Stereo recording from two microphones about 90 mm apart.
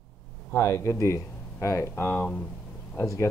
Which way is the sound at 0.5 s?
30° left (ahead or behind).